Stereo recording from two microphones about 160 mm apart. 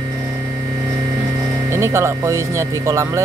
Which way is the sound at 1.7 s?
15° right (ahead or behind).